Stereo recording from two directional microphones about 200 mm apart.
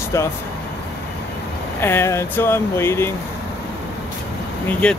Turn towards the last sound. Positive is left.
turn(degrees=5)  # may be behind; listen again after turning